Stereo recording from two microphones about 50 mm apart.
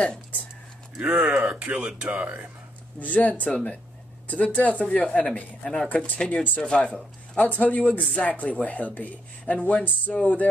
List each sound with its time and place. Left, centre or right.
1.0 s speech: right
3.0 s speech: left
5.6 s speech: centre
7.4 s speech: left
10.2 s speech: left